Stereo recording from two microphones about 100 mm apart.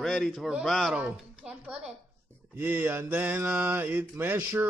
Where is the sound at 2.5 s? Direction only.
20° right (ahead or behind).